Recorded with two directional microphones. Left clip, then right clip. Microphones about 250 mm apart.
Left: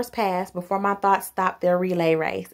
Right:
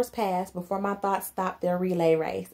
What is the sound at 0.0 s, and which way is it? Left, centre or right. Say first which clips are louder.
Speech: left 3 dB; left.